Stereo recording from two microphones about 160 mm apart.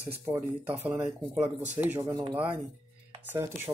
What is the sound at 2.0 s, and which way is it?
Speech, 30° right (ahead or behind).